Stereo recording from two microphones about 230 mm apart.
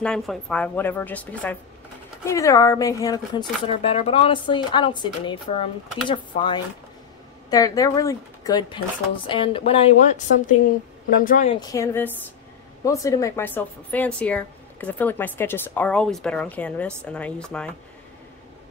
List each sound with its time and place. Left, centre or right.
0.0 s speech: centre; by 11.5 s left
11.5 s speech: centre